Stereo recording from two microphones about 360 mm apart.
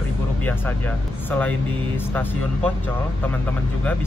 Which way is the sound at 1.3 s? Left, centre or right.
Centre.